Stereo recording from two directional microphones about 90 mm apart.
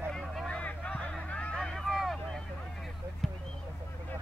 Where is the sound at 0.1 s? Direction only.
5° left (ahead or behind).